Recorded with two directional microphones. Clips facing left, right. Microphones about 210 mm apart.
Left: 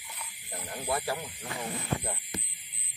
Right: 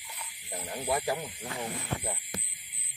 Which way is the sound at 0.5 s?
15° right (ahead or behind).